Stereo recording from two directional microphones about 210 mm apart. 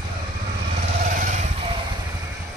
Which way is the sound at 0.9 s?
35° right (ahead or behind).